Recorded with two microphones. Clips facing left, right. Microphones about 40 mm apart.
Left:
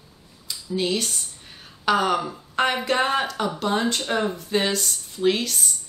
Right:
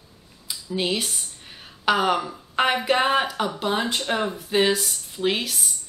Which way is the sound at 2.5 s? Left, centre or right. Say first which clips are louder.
Right 1 dB; centre.